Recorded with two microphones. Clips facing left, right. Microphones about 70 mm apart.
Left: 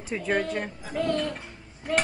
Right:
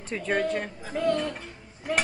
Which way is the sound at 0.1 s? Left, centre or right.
Centre.